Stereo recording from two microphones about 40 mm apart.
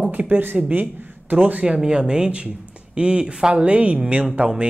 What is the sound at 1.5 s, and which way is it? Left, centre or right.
Speech, right.